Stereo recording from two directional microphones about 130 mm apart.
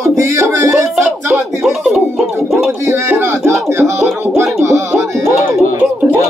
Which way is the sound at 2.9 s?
20° right (ahead or behind).